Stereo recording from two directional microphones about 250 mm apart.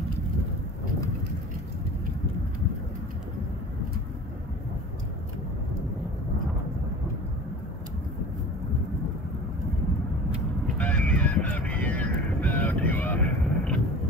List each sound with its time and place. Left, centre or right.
10.8 s honk: centre